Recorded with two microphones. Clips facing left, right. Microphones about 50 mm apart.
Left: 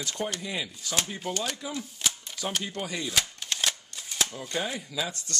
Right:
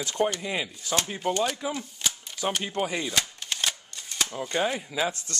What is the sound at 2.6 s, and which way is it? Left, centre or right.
Chopping, right.